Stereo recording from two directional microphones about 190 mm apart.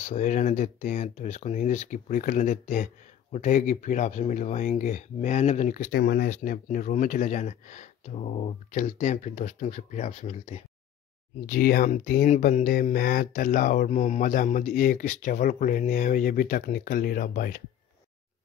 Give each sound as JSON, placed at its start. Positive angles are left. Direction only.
{"t": 0.0, "sound": "speech", "side_deg": 40}
{"t": 5.9, "sound": "speech", "side_deg": 55}
{"t": 11.4, "sound": "speech", "side_deg": 50}